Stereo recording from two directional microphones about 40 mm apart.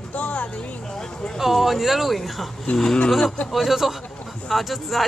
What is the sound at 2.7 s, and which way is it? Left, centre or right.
Speech, left.